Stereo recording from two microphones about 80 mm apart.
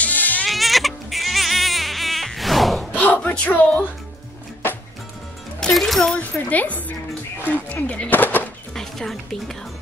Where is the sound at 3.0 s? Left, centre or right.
Centre.